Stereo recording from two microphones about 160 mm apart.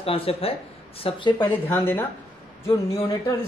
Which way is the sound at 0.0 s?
35° left (ahead or behind).